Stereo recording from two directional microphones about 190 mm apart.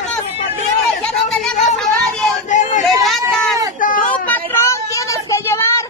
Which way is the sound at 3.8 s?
45° left (ahead or behind).